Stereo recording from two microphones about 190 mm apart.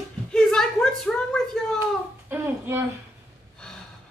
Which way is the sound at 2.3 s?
10° right (ahead or behind).